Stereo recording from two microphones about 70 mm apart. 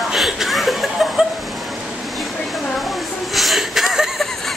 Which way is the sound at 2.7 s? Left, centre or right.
Centre.